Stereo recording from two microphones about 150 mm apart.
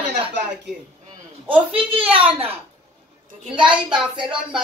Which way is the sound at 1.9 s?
40° right (ahead or behind).